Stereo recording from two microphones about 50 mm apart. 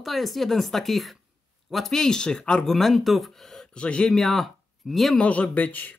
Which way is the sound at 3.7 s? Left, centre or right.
Left.